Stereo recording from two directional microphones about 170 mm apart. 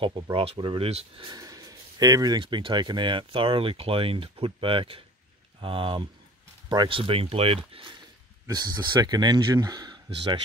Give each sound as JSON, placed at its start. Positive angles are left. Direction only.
{"t": 0.0, "sound": "speech", "side_deg": -30}